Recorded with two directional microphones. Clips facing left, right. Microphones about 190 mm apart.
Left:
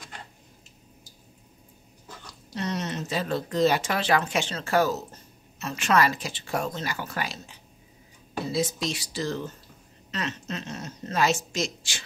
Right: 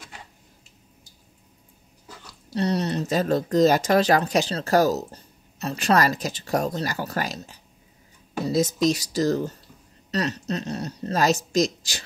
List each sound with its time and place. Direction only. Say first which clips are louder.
2.5 s speech: right 6 dB; 35° right (ahead or behind)